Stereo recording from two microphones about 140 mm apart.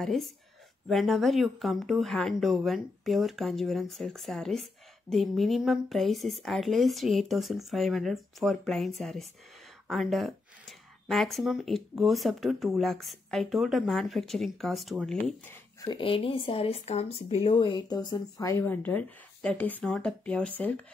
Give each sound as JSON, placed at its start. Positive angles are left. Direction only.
{"t": 0.0, "sound": "speech", "side_deg": 0}
{"t": 15.8, "sound": "speech", "side_deg": 35}
{"t": 18.6, "sound": "speech", "side_deg": 15}